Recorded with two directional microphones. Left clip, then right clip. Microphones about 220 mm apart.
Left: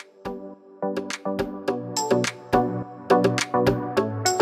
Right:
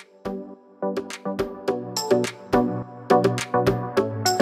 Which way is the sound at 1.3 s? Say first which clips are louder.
Right 1 dB; centre (ahead or behind).